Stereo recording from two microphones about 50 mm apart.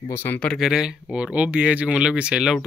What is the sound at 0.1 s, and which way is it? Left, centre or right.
Speech, left.